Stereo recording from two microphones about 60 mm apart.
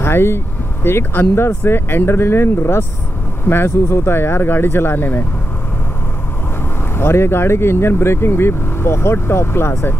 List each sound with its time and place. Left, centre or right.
0.0 s speech: left
7.0 s speech: left